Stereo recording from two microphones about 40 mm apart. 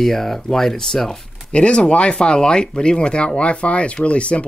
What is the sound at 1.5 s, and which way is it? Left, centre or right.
Speech, left.